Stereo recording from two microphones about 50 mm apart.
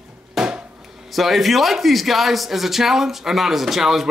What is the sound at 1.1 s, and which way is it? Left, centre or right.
A man's voice, centre.